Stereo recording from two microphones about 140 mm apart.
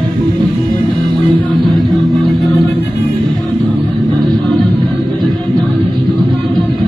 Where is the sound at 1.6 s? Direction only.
Centre (ahead or behind).